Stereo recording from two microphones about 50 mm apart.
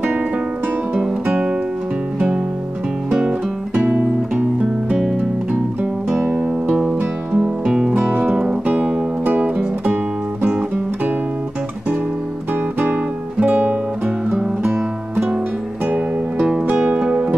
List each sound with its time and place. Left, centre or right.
2.1 s music: right
6.2 s music: right
7.3 s music: centre; by 9.5 s right
12.9 s music: right
14.6 s music: right
16.7 s music: right